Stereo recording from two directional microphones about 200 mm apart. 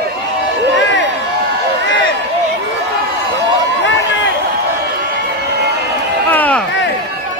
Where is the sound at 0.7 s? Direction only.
65° left (ahead or behind).